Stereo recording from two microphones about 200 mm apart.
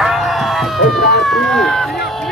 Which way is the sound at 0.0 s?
Centre (ahead or behind).